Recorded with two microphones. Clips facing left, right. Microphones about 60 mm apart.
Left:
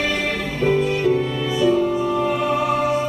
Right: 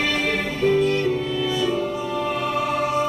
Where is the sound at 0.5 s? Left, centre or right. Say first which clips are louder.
Even; centre.